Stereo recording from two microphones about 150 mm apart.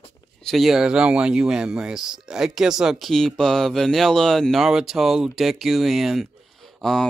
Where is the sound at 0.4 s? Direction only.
Centre (ahead or behind).